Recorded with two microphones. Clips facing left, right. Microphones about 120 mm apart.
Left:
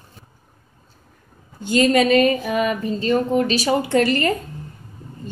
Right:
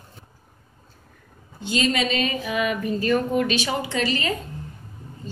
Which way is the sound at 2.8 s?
25° left (ahead or behind).